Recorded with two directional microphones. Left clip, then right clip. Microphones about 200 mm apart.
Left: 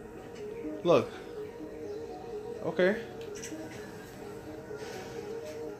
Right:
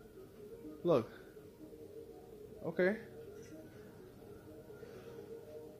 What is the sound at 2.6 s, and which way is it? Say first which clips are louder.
Speech: left 6 dB; 35° right (ahead or behind).